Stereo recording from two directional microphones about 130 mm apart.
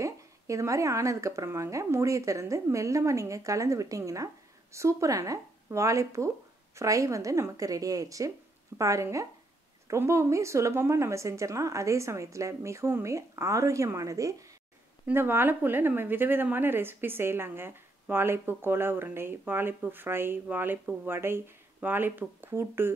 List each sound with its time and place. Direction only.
0.0 s a woman's voice: 25° right (ahead or behind)